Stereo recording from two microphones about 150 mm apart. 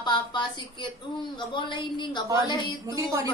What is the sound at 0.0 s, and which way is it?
A woman's voice, 30° left (ahead or behind).